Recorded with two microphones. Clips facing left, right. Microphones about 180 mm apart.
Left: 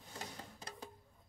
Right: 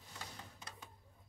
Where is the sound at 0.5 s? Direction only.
35° left (ahead or behind).